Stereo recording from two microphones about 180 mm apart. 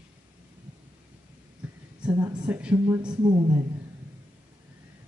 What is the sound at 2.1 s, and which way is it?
Speech, 20° right (ahead or behind).